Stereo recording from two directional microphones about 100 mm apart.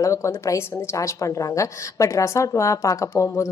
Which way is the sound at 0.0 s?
30° left (ahead or behind).